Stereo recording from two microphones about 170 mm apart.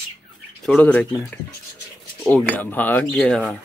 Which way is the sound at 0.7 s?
10° left (ahead or behind).